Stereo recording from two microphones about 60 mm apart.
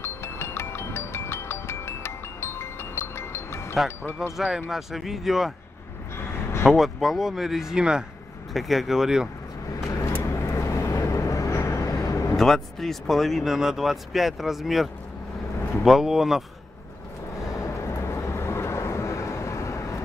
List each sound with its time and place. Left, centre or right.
0.0 s music: left
4.2 s speech: centre
6.1 s vehicle: left
6.7 s speech: centre
10.2 s vehicle: left
11.9 s vehicle: left
12.4 s speech: centre
17.4 s vehicle: left